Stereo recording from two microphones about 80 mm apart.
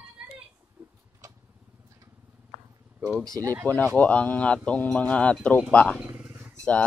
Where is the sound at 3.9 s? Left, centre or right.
Centre.